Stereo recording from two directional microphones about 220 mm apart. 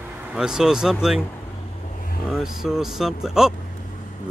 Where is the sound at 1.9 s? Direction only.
40° left (ahead or behind).